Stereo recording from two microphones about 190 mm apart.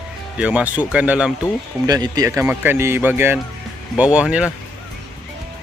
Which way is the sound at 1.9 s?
20° right (ahead or behind).